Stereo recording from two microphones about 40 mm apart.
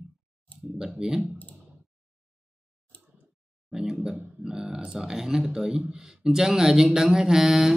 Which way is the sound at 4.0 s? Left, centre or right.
Right.